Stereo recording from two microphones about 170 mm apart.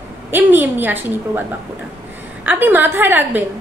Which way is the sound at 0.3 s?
10° right (ahead or behind).